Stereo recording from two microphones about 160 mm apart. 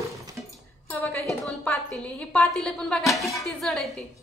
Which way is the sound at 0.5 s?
5° left (ahead or behind).